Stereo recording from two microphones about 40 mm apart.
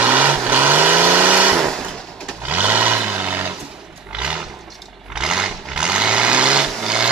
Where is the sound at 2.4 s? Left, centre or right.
Right.